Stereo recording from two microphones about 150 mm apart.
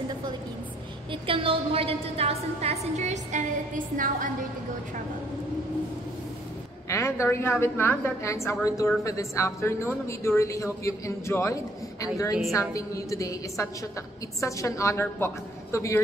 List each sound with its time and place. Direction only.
1.1 s a woman's voice: 35° right (ahead or behind); by 4.3 s 65° right (ahead or behind)
6.9 s a woman's voice: 20° left (ahead or behind)